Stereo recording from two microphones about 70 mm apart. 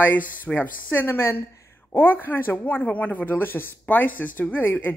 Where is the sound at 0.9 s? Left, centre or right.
Left.